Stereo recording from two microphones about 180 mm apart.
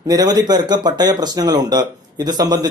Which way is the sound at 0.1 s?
20° right (ahead or behind).